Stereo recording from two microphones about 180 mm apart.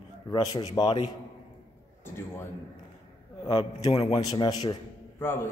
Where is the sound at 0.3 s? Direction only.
25° left (ahead or behind).